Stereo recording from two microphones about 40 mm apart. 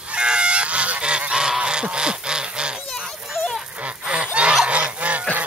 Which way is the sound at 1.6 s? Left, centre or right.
Right.